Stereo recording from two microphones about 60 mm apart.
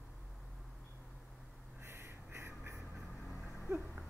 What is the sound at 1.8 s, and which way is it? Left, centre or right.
Duck, right.